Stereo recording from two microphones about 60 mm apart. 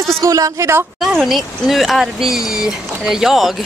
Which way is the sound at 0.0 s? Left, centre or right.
Right.